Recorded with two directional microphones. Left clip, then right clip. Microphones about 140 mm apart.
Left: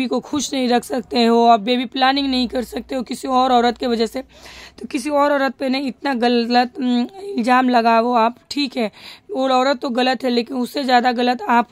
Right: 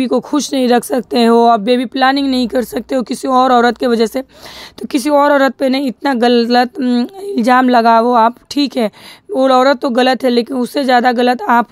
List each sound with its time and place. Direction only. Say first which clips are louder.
0.0 s a woman's voice: right 7 dB; 25° right (ahead or behind)
6.8 s speech: right 5 dB; 20° right (ahead or behind)
7.3 s a woman's voice: right 5 dB; 35° right (ahead or behind)